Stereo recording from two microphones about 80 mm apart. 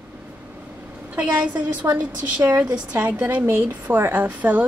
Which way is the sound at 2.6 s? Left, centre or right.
Centre.